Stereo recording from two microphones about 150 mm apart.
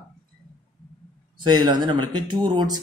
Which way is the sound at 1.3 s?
30° right (ahead or behind).